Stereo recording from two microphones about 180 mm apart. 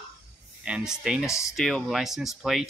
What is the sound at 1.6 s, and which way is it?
Speech, centre (ahead or behind).